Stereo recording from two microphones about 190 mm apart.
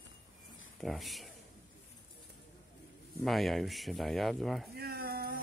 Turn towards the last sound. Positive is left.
turn(degrees=-55)  # may be behind; listen again after turning